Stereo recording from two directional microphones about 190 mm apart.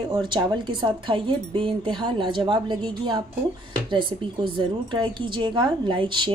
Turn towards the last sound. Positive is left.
turn(degrees=-25)  # may be behind; listen again after turning